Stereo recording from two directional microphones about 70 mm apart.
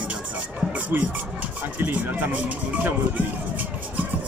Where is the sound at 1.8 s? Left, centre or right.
Right.